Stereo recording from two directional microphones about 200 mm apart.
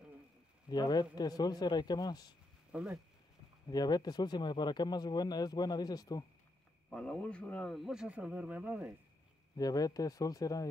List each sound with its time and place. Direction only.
0.7 s speech: 20° left (ahead or behind)
2.7 s speech: 5° right (ahead or behind)
3.6 s speech: 20° left (ahead or behind)
6.9 s speech: 5° left (ahead or behind)
9.6 s speech: 20° left (ahead or behind)